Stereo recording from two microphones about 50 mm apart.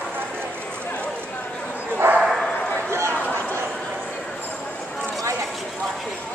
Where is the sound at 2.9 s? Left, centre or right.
Right.